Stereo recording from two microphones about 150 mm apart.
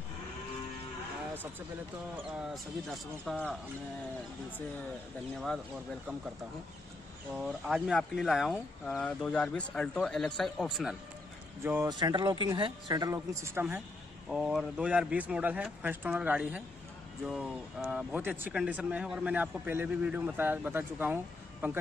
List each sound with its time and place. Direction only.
2.3 s speech: centre (ahead or behind)
5.4 s speech: 5° left (ahead or behind)
7.3 s speech: 5° right (ahead or behind)
11.6 s speech: 15° right (ahead or behind)
11.9 s speech: 30° right (ahead or behind); by 13.8 s 15° right (ahead or behind)
14.3 s speech: centre (ahead or behind)